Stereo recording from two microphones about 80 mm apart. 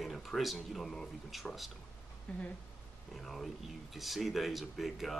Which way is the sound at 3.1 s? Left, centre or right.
Centre.